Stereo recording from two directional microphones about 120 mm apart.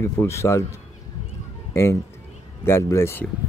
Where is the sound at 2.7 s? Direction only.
20° left (ahead or behind).